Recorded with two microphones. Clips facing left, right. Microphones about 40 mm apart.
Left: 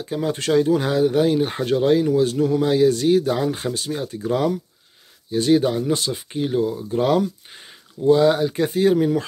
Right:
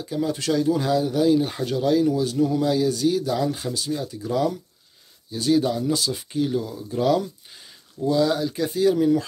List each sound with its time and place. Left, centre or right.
0.0 s speech: left
6.3 s speech: left